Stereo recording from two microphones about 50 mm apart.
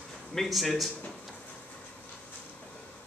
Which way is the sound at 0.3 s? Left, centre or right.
Centre.